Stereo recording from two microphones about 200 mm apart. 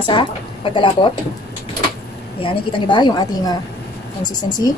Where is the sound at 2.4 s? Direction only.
20° left (ahead or behind).